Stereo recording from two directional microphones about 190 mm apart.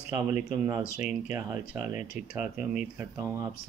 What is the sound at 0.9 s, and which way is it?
Speech, 35° left (ahead or behind).